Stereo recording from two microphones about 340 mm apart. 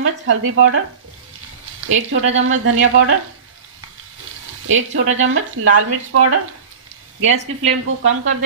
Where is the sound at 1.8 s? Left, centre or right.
Right.